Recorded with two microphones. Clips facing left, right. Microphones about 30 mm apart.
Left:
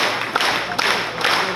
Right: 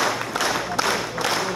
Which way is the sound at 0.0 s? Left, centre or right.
Left.